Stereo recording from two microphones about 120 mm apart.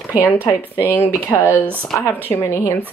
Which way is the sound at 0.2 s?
15° left (ahead or behind).